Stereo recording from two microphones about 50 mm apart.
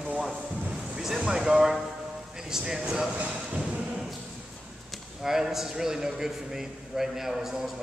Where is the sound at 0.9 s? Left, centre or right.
Centre.